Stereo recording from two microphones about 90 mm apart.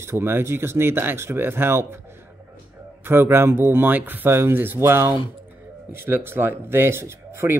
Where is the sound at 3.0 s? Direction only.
25° right (ahead or behind).